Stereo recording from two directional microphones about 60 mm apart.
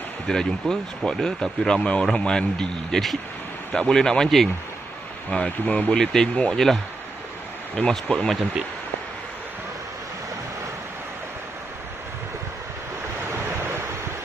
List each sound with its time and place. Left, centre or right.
0.3 s speech: centre
5.3 s speech: left
7.9 s speech: centre